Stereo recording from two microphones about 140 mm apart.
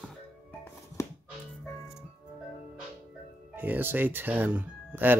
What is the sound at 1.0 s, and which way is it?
Music, 20° left (ahead or behind).